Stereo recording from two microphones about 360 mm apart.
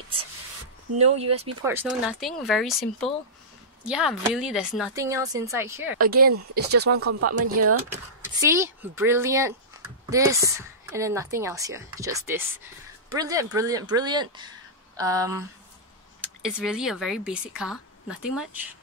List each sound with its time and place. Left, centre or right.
0.9 s speech: centre
1.6 s a woman's voice: centre
5.9 s speech: right
6.9 s speech: right
8.4 s speech: centre